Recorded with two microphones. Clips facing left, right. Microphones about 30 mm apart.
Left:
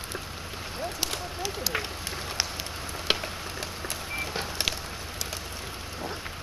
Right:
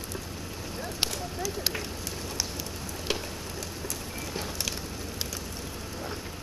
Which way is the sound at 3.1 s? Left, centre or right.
Left.